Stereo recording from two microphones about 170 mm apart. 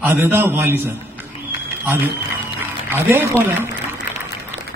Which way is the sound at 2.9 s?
10° right (ahead or behind).